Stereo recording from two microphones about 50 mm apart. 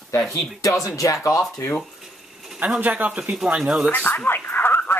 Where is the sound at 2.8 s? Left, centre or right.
Right.